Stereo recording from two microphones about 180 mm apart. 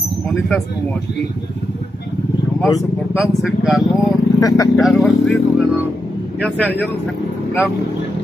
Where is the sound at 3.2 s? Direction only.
Centre (ahead or behind).